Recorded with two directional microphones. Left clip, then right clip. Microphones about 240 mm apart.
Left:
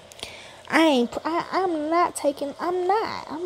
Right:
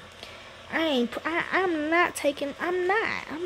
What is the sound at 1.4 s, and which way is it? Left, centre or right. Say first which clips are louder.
Speech: left 1 dB; centre.